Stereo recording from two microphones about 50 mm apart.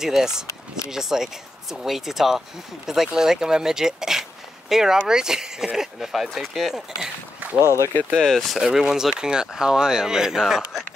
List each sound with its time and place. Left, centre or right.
0.0 s speech: centre
7.6 s speech: left
8.2 s speech: centre
8.5 s speech: centre